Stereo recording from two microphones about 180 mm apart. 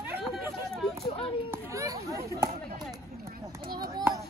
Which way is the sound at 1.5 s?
15° right (ahead or behind).